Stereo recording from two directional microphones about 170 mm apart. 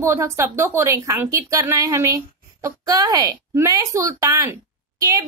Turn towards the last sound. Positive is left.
turn(degrees=-20)  # may be behind; listen again after turning